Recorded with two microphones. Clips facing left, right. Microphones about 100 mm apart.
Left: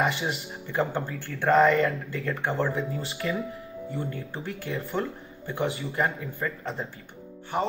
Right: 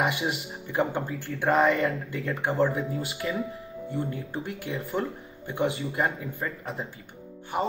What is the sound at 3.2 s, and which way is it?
Speech, 15° right (ahead or behind).